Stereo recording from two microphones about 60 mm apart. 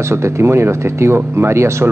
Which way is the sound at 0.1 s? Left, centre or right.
Right.